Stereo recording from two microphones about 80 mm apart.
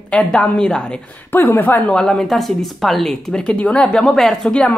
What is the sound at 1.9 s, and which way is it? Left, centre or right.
Speech, centre.